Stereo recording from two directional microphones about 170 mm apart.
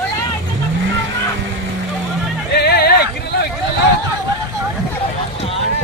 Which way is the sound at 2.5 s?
70° left (ahead or behind).